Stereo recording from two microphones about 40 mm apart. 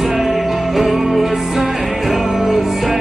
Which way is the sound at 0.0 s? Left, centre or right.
Centre.